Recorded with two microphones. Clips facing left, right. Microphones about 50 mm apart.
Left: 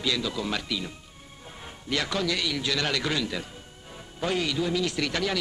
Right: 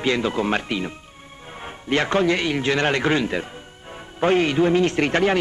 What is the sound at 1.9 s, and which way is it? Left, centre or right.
A man's voice, right.